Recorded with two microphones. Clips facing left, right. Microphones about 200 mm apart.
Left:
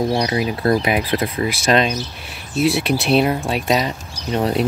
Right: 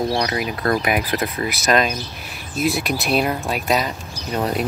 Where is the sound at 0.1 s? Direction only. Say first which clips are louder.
Left 3 dB; 20° left (ahead or behind).